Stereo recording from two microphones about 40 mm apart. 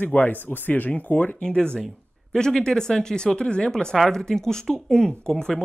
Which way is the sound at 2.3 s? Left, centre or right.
Centre.